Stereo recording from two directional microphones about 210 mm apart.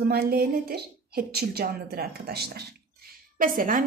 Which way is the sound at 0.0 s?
45° right (ahead or behind).